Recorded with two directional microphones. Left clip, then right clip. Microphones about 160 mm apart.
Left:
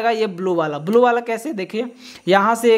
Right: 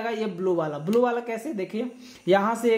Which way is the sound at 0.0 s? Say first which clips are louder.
Left 8 dB; 30° left (ahead or behind).